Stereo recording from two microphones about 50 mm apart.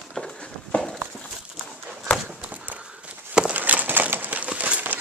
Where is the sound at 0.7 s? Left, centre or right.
Left.